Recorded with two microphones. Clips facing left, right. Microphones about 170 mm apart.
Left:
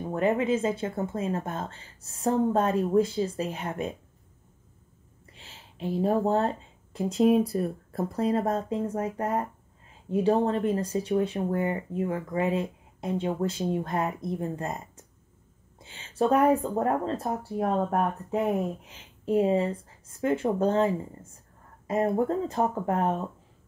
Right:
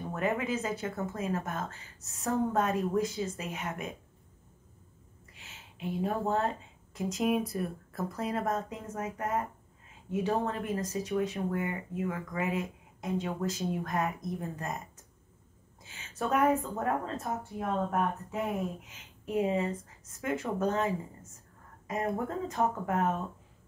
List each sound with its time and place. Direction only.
0.1 s speech: 25° left (ahead or behind)
5.3 s a woman's voice: 30° left (ahead or behind)